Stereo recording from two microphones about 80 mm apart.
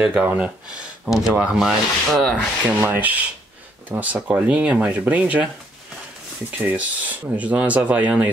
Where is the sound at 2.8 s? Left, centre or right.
Right.